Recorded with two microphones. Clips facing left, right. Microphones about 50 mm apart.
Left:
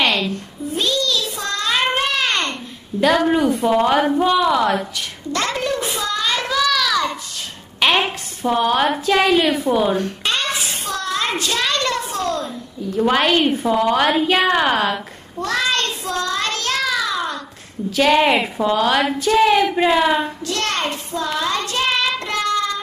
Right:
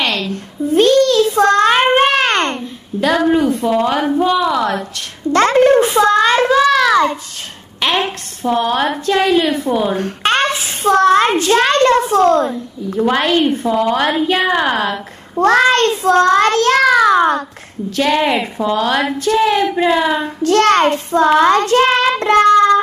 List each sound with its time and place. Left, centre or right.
0.0 s a sound: centre
0.3 s child singing: right
2.0 s a sound: right
3.0 s a woman's voice: centre
5.3 s a sound: right
7.8 s a woman's voice: centre
9.9 s a child's voice: right
13.0 s a woman's voice: centre
15.3 s child singing: right
17.9 s a woman's voice: centre
20.4 s child singing: right